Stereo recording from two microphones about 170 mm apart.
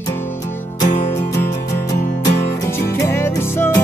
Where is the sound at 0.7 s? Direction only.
15° left (ahead or behind).